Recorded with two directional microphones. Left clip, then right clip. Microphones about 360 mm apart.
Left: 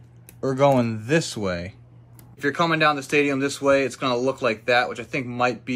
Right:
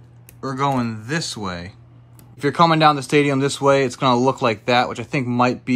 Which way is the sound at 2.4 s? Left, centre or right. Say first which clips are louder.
Right 6 dB; centre.